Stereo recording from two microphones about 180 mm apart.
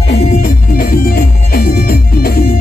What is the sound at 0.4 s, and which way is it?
Music, 55° left (ahead or behind).